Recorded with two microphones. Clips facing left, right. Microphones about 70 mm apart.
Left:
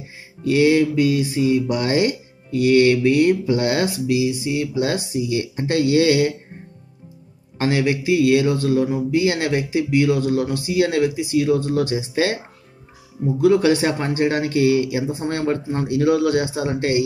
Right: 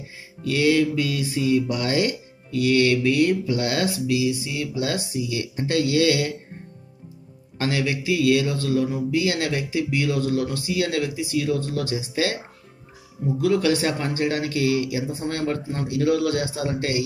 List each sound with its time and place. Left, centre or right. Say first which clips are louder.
0.4 s music: left 4 dB; left
7.5 s music: left 5 dB; left
13.4 s music: left 5 dB; left